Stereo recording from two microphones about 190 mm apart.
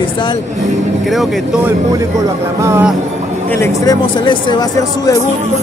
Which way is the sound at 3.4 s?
10° left (ahead or behind).